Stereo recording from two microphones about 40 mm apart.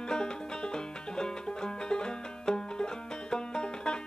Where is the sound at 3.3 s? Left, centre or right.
Centre.